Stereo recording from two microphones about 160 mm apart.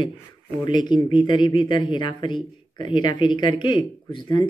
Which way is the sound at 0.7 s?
30° left (ahead or behind).